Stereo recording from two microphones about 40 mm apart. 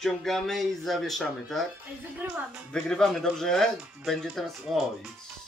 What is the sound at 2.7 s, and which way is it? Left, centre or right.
Speech, centre.